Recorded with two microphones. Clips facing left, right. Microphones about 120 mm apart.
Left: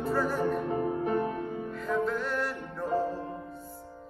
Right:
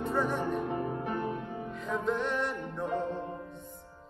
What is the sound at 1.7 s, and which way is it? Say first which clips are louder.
Music: left 2 dB; centre (ahead or behind).